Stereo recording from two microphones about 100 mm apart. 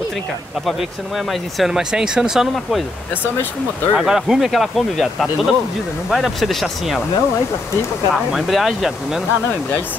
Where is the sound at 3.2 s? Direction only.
20° left (ahead or behind).